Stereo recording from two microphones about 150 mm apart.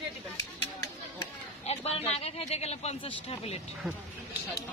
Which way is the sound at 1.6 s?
45° left (ahead or behind).